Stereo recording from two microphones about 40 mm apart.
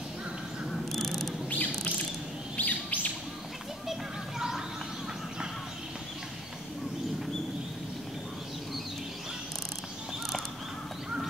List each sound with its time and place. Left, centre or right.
0.7 s insect: centre
1.5 s chirp: left
4.4 s a sound: centre